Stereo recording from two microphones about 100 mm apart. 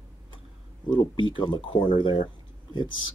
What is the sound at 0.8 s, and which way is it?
Speech, 55° left (ahead or behind).